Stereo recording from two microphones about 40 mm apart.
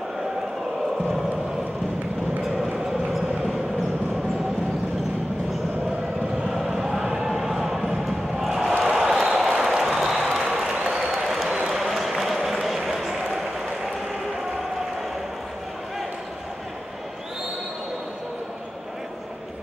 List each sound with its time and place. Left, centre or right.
2.4 s vehicle: centre
6.5 s a sound: centre
7.1 s basketball bounce: centre
8.9 s a sound: centre
10.7 s applause: right
11.1 s applause: centre
12.4 s run: centre